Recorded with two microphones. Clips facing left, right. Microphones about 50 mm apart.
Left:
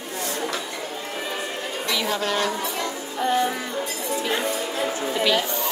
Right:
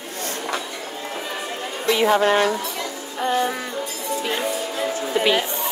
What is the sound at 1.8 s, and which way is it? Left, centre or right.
Speech, right.